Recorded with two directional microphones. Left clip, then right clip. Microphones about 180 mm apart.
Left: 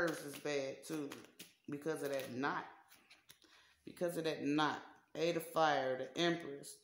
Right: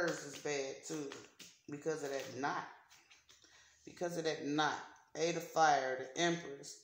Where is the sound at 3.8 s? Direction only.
45° left (ahead or behind).